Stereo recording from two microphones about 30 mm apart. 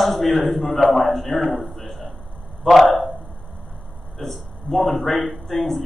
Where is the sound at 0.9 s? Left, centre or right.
Centre.